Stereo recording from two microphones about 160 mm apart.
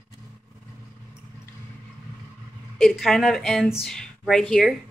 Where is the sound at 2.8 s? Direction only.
Centre (ahead or behind).